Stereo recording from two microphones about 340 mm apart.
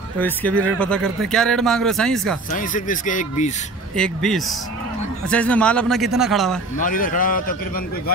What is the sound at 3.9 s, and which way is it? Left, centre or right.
Speech, centre.